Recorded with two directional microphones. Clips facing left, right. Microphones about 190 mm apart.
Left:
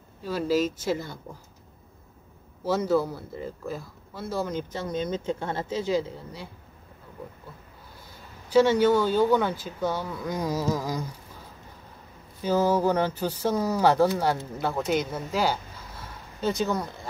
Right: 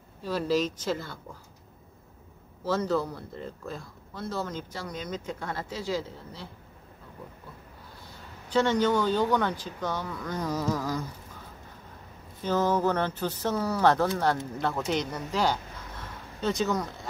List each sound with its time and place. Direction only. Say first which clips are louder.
0.2 s speech: left 2 dB; centre (ahead or behind)
2.6 s speech: left 3 dB; 10° left (ahead or behind)
8.5 s speech: left 5 dB; 10° left (ahead or behind)
12.4 s speech: left 3 dB; 10° left (ahead or behind)